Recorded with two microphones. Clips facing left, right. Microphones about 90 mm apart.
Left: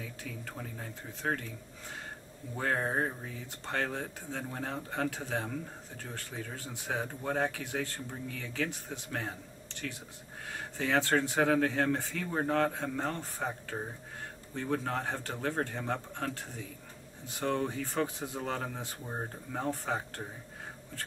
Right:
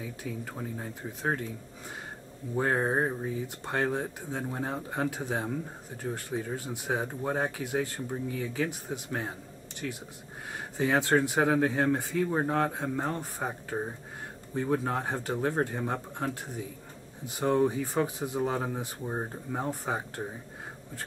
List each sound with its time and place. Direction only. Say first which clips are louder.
0.0 s speech: right 5 dB; 15° right (ahead or behind)
2.5 s speech: right 4 dB; 20° right (ahead or behind)